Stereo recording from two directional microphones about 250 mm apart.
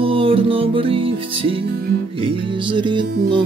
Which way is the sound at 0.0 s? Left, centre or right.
Right.